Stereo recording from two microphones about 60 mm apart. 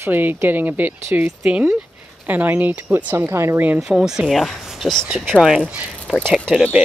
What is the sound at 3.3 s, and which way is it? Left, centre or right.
Speech, right.